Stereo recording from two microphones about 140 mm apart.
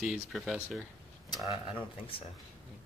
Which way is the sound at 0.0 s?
5° right (ahead or behind).